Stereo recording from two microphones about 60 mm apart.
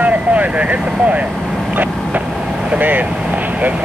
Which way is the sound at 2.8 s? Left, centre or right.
Right.